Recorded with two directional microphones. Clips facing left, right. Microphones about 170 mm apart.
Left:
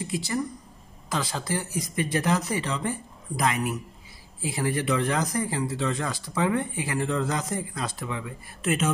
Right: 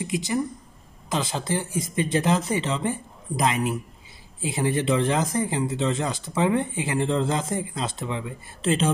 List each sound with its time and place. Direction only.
0.0 s speech: 20° right (ahead or behind)